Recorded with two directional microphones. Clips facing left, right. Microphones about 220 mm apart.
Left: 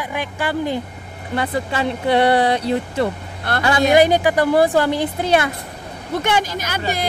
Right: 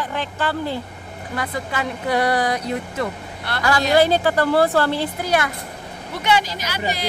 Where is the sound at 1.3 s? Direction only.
30° left (ahead or behind).